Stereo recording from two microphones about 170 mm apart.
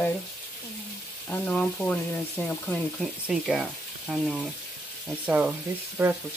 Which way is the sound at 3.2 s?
Centre (ahead or behind).